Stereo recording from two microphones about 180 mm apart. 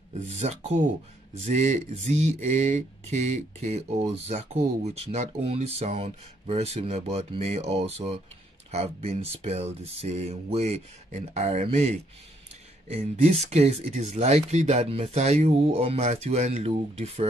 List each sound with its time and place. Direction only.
0.3 s speech: 35° right (ahead or behind)